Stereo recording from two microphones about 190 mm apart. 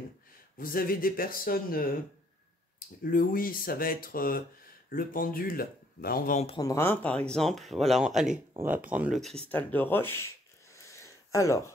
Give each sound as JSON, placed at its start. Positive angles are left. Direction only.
{"t": 0.6, "sound": "speech", "side_deg": 50}
{"t": 3.0, "sound": "speech", "side_deg": 50}
{"t": 6.4, "sound": "speech", "side_deg": 20}
{"t": 10.7, "sound": "a sound", "side_deg": 15}